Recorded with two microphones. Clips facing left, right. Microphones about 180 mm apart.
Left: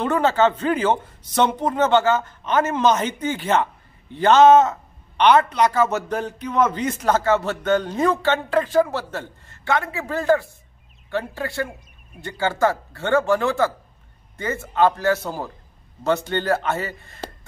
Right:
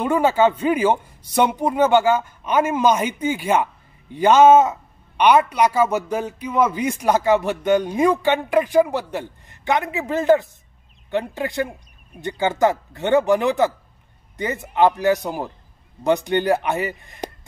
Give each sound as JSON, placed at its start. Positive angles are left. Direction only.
{"t": 0.0, "sound": "speech", "side_deg": -10}